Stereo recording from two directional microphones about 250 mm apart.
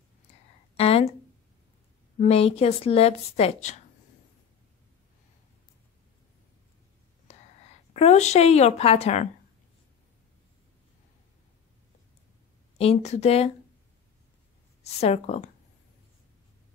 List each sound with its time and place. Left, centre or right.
0.7 s a sound: left
2.1 s speech: left
7.3 s whispering: left
7.9 s speech: left
12.7 s speech: left
14.8 s speech: left